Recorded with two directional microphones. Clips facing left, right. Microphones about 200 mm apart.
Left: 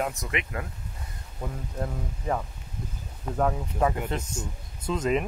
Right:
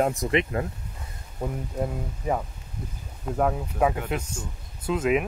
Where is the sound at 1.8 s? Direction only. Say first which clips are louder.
Right 3 dB; 10° right (ahead or behind).